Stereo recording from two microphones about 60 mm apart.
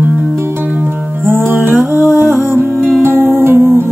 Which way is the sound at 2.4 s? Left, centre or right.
Right.